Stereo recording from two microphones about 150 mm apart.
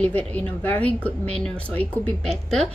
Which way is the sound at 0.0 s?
10° left (ahead or behind).